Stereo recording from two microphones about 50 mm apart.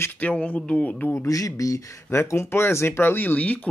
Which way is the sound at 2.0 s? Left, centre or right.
Left.